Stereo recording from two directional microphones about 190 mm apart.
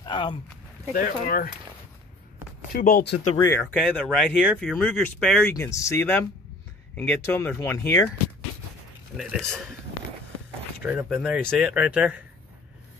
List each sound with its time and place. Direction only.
0.0 s speech: 25° left (ahead or behind)
0.9 s speech: 45° left (ahead or behind)
2.7 s speech: 50° left (ahead or behind)
3.7 s speech: 5° left (ahead or behind)
9.1 s a man's voice: centre (ahead or behind)
10.8 s speech: 5° right (ahead or behind)